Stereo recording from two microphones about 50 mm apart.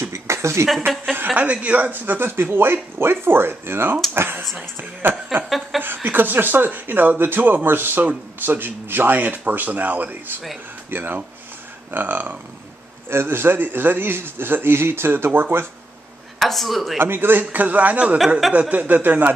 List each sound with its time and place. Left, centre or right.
0.1 s a sound: right
0.7 s speech: centre
1.1 s a man's voice: right
13.1 s a man's voice: right
16.3 s speech: centre
17.0 s speech: right